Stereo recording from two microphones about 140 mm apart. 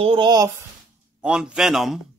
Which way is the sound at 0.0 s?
40° right (ahead or behind).